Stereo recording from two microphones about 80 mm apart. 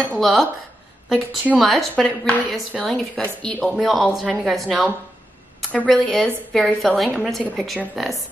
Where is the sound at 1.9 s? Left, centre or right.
Centre.